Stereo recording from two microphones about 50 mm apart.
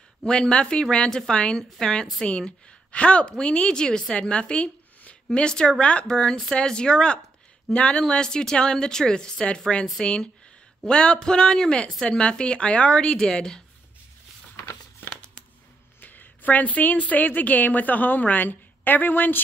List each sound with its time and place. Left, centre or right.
0.2 s a woman's voice: centre
8.1 s a woman's voice: centre
16.0 s a woman's voice: left